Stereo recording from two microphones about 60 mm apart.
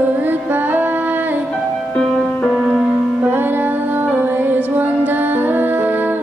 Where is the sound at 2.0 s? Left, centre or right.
Centre.